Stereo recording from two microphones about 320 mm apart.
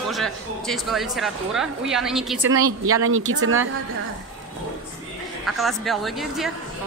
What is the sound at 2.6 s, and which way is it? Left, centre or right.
Speech, right.